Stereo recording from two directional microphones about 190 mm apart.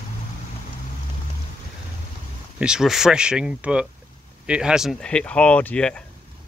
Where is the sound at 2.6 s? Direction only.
5° right (ahead or behind).